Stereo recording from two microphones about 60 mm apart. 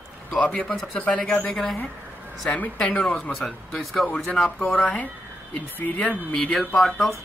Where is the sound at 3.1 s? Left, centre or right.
Centre.